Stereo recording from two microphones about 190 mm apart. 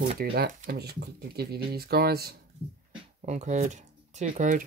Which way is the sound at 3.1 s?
40° right (ahead or behind).